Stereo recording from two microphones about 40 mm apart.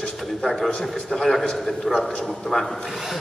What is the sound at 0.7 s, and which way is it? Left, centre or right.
A man's voice, centre.